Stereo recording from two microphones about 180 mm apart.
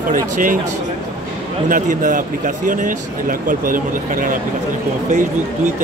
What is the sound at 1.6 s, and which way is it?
Speech, 45° right (ahead or behind).